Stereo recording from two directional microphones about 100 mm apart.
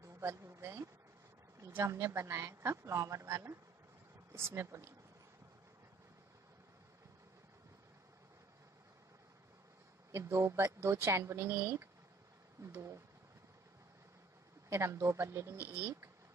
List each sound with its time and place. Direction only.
0.0 s a sound: 30° right (ahead or behind)
1.6 s a woman's voice: 25° right (ahead or behind)
10.1 s a woman's voice: 30° right (ahead or behind)
14.7 s a woman's voice: 25° right (ahead or behind)